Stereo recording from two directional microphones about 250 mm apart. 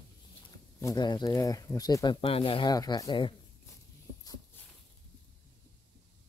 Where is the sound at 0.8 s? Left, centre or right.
Centre.